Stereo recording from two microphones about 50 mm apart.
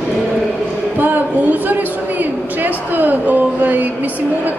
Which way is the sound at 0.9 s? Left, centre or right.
Right.